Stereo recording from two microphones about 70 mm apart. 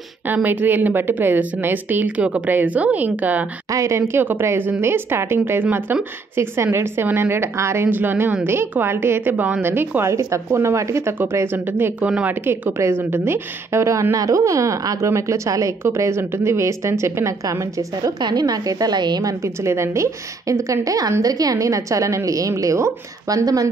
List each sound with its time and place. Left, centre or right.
0.3 s a woman's voice: right
3.7 s speech: right
4.1 s a woman's voice: right
7.9 s a woman's voice: right
9.3 s a woman's voice: right
9.6 s speech: right
10.1 s speech: right
11.5 s a woman's voice: right
12.4 s speech: right
18.2 s a woman's voice: right
19.2 s a woman's voice: right